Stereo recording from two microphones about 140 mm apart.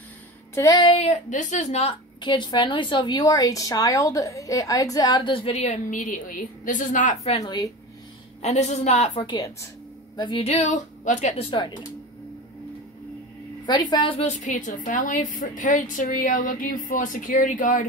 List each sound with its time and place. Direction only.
0.7 s speech: 45° left (ahead or behind)
2.2 s a woman's voice: 30° left (ahead or behind); by 7.2 s 70° left (ahead or behind)
7.4 s speech: 30° left (ahead or behind)
8.4 s speech: 50° left (ahead or behind)
9.2 s a woman's voice: 35° left (ahead or behind)
10.4 s speech: 55° left (ahead or behind)
13.7 s a woman's voice: 30° left (ahead or behind)
14.2 s a woman's voice: 65° left (ahead or behind)